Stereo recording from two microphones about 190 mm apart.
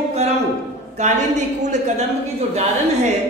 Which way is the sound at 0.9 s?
40° right (ahead or behind).